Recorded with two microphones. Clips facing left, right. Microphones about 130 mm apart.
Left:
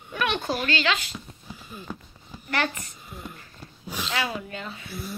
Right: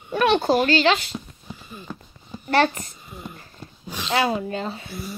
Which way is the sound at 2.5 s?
35° right (ahead or behind).